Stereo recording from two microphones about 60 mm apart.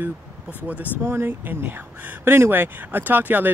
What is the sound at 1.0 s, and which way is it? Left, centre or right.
Speech, right.